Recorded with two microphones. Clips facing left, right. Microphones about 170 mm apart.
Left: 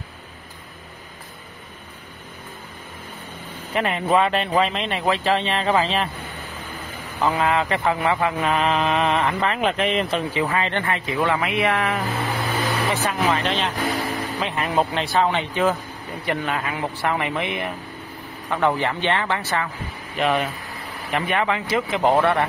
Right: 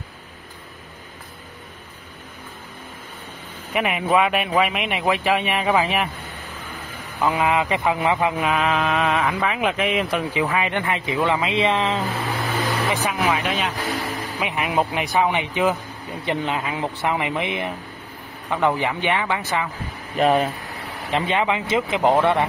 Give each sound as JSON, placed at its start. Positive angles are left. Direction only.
{"t": 3.7, "sound": "speech", "side_deg": -10}
{"t": 7.2, "sound": "speech", "side_deg": -10}
{"t": 8.5, "sound": "speech", "side_deg": 0}
{"t": 20.2, "sound": "speech", "side_deg": -40}
{"t": 21.1, "sound": "speech", "side_deg": -20}